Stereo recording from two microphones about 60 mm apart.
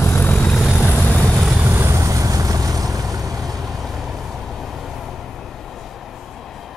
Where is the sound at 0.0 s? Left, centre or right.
Left.